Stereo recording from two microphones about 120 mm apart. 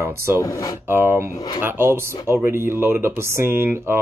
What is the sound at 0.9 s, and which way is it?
Speech, 20° right (ahead or behind).